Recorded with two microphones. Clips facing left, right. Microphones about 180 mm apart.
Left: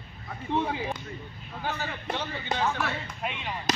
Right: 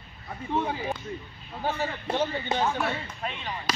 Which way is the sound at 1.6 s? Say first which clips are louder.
Right 4 dB; 30° right (ahead or behind).